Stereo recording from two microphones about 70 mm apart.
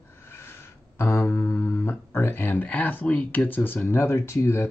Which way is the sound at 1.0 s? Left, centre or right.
Left.